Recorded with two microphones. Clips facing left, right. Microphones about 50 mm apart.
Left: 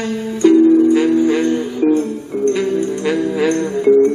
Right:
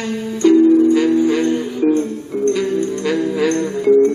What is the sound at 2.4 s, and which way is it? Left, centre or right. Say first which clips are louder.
Music: left 1 dB; centre.